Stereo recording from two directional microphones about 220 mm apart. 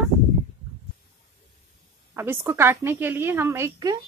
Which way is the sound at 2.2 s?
10° right (ahead or behind).